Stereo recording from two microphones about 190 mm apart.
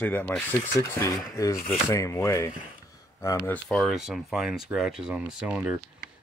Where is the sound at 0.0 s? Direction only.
10° left (ahead or behind).